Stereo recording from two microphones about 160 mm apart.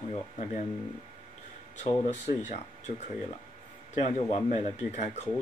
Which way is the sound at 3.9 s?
45° left (ahead or behind).